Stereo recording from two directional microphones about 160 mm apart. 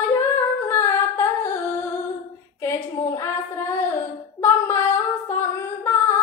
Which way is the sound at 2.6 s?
15° left (ahead or behind).